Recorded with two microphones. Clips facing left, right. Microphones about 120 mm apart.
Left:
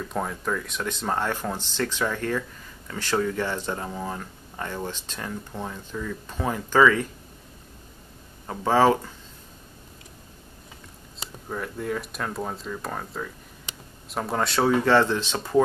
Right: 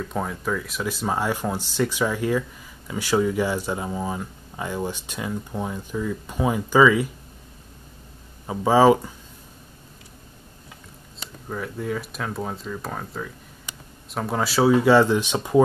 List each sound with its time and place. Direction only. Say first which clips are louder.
0.0 s speech: right 1 dB; centre (ahead or behind)
8.5 s speech: right 4 dB; 10° right (ahead or behind)
11.4 s speech: right 1 dB; centre (ahead or behind)